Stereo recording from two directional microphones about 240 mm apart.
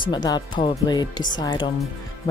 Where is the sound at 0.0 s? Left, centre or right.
Centre.